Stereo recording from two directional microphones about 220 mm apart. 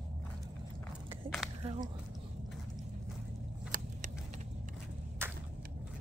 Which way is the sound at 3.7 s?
35° right (ahead or behind).